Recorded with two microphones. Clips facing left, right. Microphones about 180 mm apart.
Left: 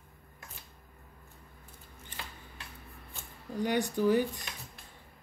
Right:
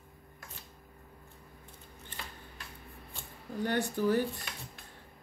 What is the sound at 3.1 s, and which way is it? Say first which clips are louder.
Speech: left 1 dB; 15° left (ahead or behind).